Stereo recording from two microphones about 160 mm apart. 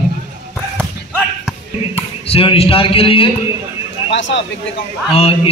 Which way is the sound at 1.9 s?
35° left (ahead or behind).